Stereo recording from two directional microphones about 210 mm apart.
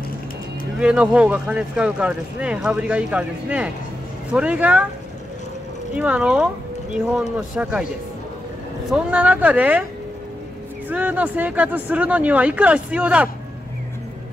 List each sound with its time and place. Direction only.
0.7 s speech: 5° right (ahead or behind)
5.9 s speech: 5° right (ahead or behind)
8.9 s speech: 5° right (ahead or behind)
10.9 s speech: 5° right (ahead or behind)